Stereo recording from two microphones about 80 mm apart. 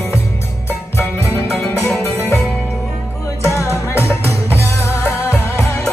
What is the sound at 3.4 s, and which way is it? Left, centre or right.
Music, left.